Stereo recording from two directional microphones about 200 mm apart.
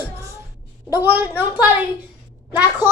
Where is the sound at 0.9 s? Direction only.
10° right (ahead or behind).